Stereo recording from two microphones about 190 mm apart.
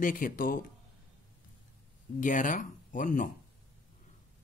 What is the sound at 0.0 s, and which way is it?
Speech, 45° left (ahead or behind).